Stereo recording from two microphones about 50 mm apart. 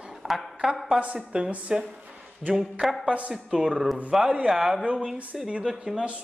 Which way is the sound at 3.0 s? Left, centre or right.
Right.